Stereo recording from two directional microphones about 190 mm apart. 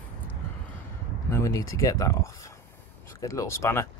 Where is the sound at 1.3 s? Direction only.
15° left (ahead or behind).